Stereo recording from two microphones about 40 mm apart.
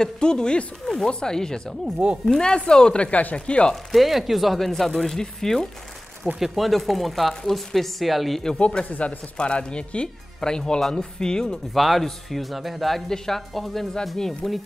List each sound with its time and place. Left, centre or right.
0.0 s speech: centre
3.1 s speech: left
3.3 s speech: left
3.9 s speech: centre
6.4 s speech: centre
8.5 s speech: left
11.7 s speech: centre